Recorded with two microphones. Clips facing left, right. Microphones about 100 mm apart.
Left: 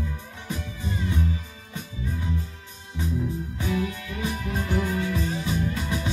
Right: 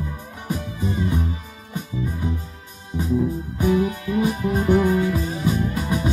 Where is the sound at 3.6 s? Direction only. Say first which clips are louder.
Right 9 dB; 30° right (ahead or behind).